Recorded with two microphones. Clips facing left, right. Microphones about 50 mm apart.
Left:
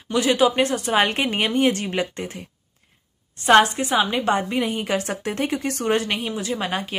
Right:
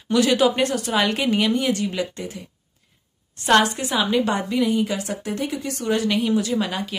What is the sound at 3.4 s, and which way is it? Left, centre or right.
Speech, left.